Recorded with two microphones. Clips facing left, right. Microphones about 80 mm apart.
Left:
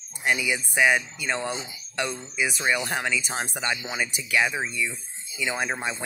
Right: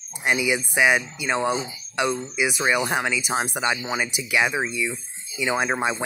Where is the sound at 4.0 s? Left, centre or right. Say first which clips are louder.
Left 2 dB; centre.